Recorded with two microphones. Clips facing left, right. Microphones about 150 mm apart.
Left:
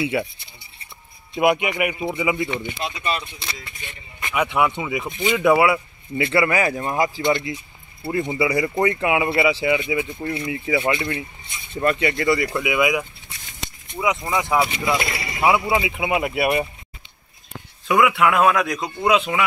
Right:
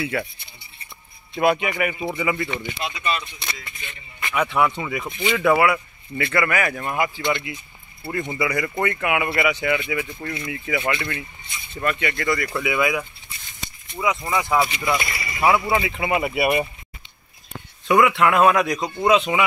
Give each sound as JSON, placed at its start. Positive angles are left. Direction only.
{"t": 0.0, "sound": "speech", "side_deg": 20}
{"t": 1.3, "sound": "speech", "side_deg": 15}
{"t": 2.8, "sound": "speech", "side_deg": 35}
{"t": 4.2, "sound": "speech", "side_deg": 15}
{"t": 8.1, "sound": "speech", "side_deg": 20}
{"t": 12.5, "sound": "speech", "side_deg": 10}
{"t": 13.6, "sound": "a sound", "side_deg": 90}
{"t": 13.9, "sound": "speech", "side_deg": 15}
{"t": 15.0, "sound": "a sound", "side_deg": 75}
{"t": 15.4, "sound": "a man's voice", "side_deg": 10}
{"t": 17.8, "sound": "a man's voice", "side_deg": 5}